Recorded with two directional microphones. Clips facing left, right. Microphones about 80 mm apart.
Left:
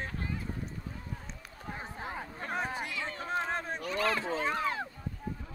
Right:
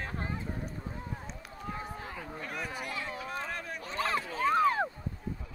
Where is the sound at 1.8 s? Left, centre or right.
Left.